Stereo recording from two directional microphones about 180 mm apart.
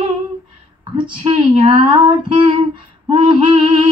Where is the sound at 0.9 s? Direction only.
30° right (ahead or behind).